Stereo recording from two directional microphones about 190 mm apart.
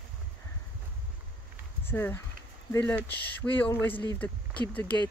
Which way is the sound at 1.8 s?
10° left (ahead or behind).